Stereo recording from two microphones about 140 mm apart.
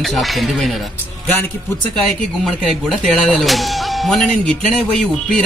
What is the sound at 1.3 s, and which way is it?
Speech, 15° left (ahead or behind).